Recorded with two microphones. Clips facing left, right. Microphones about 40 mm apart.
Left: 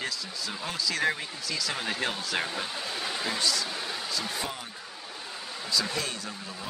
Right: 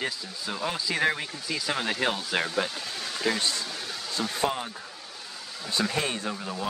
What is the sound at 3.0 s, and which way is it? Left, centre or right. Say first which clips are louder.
Speech: right 2 dB; centre.